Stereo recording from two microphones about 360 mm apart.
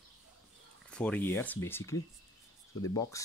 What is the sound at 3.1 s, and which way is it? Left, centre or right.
Speech, centre.